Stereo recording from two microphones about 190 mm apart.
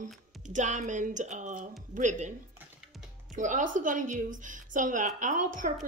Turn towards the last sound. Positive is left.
turn(degrees=-40)  # may be behind; listen again after turning